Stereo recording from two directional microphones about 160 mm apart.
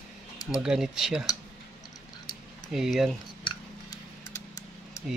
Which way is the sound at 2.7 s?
Centre (ahead or behind).